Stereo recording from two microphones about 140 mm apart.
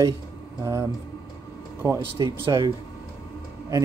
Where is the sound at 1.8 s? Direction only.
30° right (ahead or behind).